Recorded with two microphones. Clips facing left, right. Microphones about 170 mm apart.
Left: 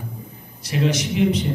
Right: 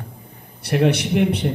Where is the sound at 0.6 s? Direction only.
60° right (ahead or behind).